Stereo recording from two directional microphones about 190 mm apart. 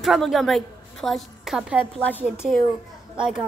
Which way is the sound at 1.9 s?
10° left (ahead or behind).